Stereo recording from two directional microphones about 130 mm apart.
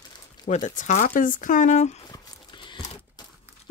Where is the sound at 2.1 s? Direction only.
35° left (ahead or behind).